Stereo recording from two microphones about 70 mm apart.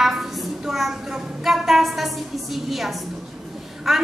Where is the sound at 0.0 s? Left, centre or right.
Centre.